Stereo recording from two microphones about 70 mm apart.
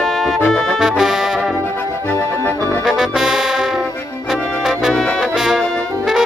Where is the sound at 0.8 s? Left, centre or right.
Centre.